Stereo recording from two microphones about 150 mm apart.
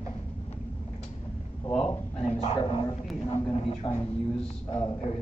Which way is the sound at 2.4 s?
40° left (ahead or behind).